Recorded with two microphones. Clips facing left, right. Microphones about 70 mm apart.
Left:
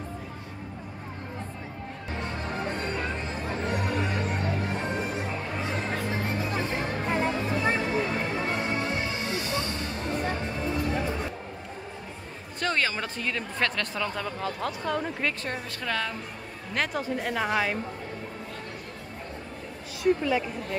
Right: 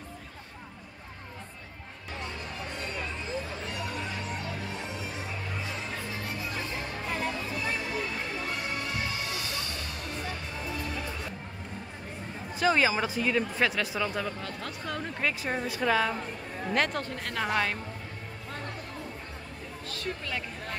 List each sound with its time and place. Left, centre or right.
2.3 s music: left
3.4 s music: left
7.1 s music: left
12.5 s speech: centre
16.7 s speech: centre
19.9 s speech: centre